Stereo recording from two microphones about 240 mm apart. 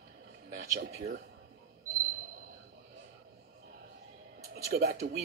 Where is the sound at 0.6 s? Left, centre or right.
Right.